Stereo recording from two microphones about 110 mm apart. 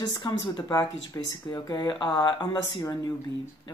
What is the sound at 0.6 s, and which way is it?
Speech, 30° left (ahead or behind).